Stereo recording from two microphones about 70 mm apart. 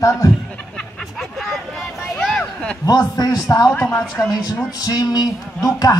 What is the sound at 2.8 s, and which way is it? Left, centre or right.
Speech, left.